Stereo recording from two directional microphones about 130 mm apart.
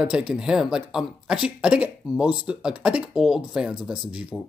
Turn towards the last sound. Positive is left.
turn(degrees=-5)  # may be behind; listen again after turning